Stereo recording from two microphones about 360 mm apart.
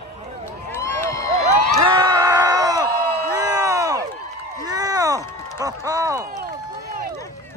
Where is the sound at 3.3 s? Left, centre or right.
Centre.